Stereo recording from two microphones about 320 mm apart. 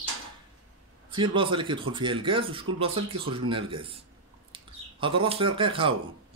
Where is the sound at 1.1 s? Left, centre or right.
Centre.